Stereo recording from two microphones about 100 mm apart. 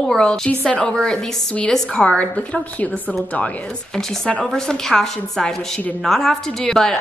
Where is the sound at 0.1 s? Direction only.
5° left (ahead or behind).